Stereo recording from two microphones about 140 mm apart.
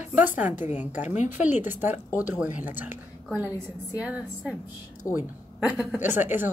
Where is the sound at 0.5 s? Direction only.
60° left (ahead or behind).